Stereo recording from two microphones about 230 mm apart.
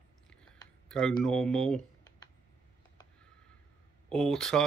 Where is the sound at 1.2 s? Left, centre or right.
Centre.